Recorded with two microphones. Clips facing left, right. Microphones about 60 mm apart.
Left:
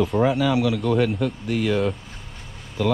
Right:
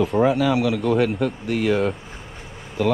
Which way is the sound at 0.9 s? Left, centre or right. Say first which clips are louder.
Right 1 dB; right.